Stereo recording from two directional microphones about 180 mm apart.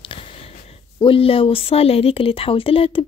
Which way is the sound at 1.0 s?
30° left (ahead or behind).